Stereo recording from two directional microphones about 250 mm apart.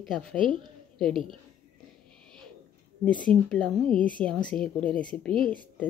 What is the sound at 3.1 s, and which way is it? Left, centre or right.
Speech, centre.